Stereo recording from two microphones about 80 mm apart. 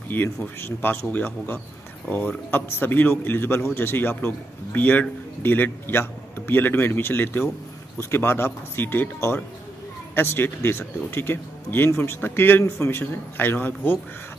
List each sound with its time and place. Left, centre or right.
0.1 s a man's voice: left
12.6 s a man's voice: left
13.0 s a man's voice: left